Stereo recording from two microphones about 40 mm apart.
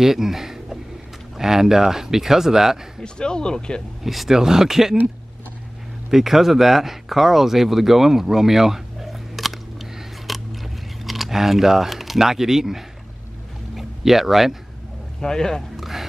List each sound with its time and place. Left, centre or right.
0.0 s speech: centre
3.0 s speech: centre
4.0 s speech: centre
4.3 s speech: centre
6.0 s a sound: centre
11.1 s speech: centre
15.1 s speech: centre
15.7 s music: centre